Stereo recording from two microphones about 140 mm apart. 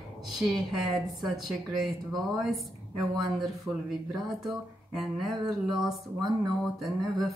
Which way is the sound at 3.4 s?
Centre (ahead or behind).